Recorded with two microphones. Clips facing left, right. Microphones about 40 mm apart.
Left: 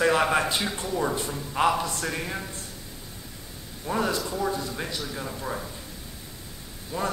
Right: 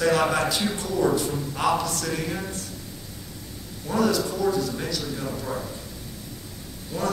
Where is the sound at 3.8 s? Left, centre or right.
Left.